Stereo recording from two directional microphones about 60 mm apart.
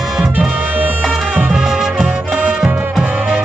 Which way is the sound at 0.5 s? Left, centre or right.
Right.